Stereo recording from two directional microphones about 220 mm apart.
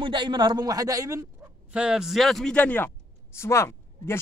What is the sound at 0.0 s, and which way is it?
A man's voice, 20° right (ahead or behind).